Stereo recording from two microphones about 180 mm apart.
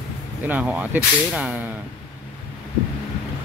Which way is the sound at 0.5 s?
10° right (ahead or behind).